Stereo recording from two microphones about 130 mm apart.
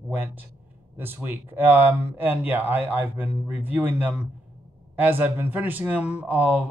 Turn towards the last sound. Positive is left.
turn(degrees=-10)  # may be behind; listen again after turning